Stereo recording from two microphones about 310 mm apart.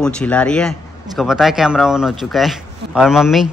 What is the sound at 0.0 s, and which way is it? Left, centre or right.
Speech, centre.